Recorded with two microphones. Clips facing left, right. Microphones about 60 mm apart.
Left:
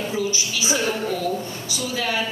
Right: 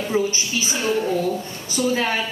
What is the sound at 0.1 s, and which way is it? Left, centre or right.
Speech, right.